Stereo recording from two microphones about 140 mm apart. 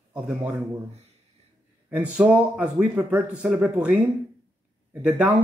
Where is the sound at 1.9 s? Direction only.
10° right (ahead or behind).